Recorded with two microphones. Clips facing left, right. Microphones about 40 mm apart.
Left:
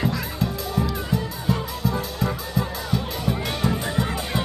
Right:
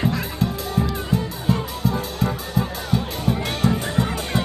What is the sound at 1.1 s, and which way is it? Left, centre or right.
Music, right.